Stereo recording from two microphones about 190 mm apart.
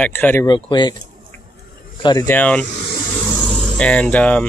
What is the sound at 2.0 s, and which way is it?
Speech, 20° left (ahead or behind).